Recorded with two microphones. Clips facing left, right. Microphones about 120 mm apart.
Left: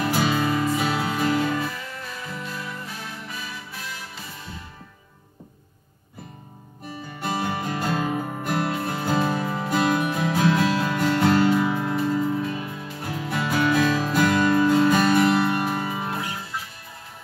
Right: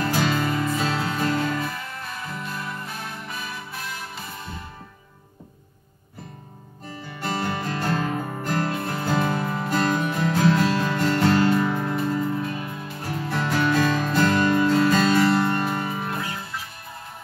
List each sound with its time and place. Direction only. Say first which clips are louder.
0.0 s music: left 1 dB; 10° left (ahead or behind)
1.6 s music: even; 50° right (ahead or behind)
7.2 s music: even; 15° left (ahead or behind)
12.4 s music: left 1 dB; 50° right (ahead or behind)
13.1 s music: even; 10° left (ahead or behind)